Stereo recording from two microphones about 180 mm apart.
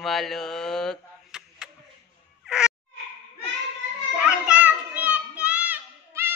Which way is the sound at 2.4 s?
5° right (ahead or behind).